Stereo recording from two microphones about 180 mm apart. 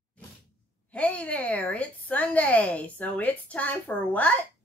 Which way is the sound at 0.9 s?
5° left (ahead or behind).